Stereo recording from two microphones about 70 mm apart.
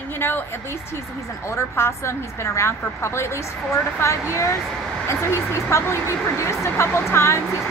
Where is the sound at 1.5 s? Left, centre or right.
Left.